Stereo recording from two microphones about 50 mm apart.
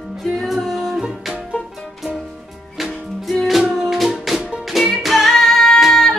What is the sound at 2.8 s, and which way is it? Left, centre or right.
Music, centre.